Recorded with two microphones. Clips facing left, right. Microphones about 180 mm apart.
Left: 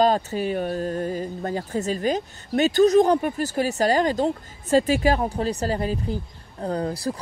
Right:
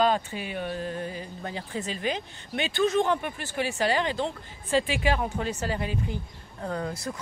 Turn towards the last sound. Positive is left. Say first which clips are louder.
# left 6 dB
turn(degrees=35)  # may be behind; listen again after turning